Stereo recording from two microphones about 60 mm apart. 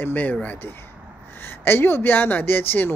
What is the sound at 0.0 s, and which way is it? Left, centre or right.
Speech, left.